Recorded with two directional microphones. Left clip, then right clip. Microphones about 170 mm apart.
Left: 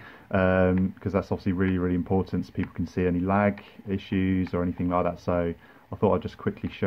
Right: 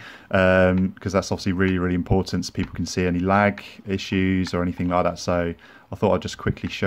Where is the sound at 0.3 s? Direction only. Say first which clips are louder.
Right 5 dB; 20° right (ahead or behind).